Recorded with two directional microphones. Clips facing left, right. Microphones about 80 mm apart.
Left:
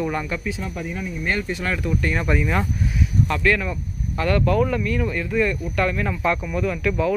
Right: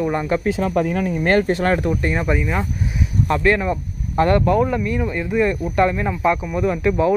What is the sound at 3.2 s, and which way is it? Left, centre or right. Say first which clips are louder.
Speech: right 6 dB; right.